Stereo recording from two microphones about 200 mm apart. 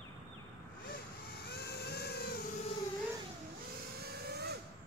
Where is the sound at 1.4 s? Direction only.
55° left (ahead or behind).